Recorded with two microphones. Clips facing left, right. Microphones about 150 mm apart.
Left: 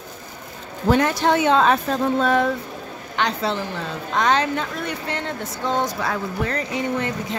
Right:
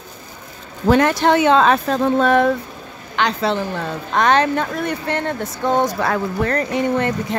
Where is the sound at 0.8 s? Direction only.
70° right (ahead or behind).